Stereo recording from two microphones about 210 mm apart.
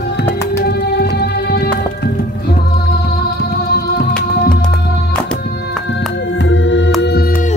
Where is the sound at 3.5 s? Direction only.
45° left (ahead or behind).